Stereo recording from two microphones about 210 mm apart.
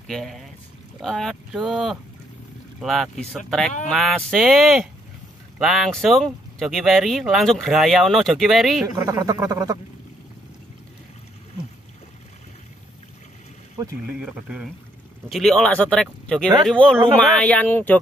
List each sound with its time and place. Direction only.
0.0 s speech: centre (ahead or behind)
8.8 s speech: 15° right (ahead or behind)
14.0 s speech: 5° right (ahead or behind)